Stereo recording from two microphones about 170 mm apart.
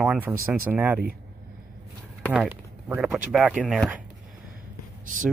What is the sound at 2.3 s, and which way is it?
Speech, 10° right (ahead or behind).